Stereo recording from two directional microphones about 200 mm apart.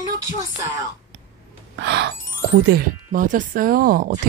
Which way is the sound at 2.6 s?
45° right (ahead or behind).